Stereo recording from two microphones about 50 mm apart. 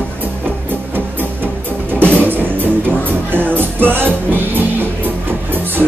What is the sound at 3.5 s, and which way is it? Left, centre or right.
Music, right.